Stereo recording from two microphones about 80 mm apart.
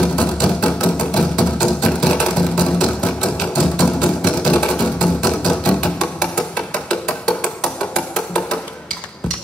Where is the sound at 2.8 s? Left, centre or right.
Centre.